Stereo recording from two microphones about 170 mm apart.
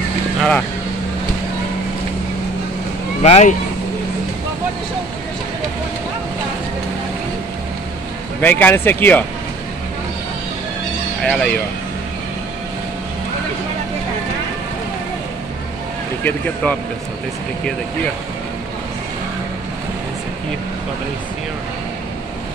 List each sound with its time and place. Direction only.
0.4 s speech: 5° left (ahead or behind)
3.2 s speech: 40° left (ahead or behind)
8.4 s speech: 10° left (ahead or behind)
11.2 s speech: 5° left (ahead or behind)
16.6 s speech: 10° left (ahead or behind)